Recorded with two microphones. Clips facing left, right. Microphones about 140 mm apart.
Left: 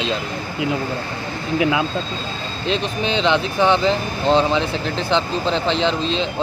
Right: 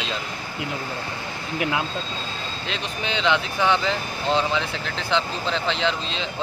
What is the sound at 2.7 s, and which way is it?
Speech, 25° left (ahead or behind).